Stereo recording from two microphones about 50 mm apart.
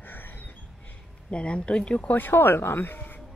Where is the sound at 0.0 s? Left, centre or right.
Left.